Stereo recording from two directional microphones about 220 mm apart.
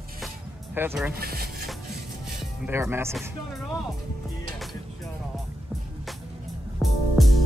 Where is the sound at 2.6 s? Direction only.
10° right (ahead or behind).